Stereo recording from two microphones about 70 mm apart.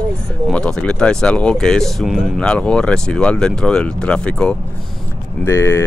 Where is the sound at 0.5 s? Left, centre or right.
Centre.